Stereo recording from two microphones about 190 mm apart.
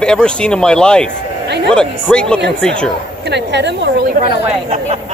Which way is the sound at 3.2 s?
65° right (ahead or behind).